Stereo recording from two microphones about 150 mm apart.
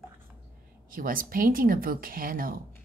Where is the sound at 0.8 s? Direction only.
65° right (ahead or behind).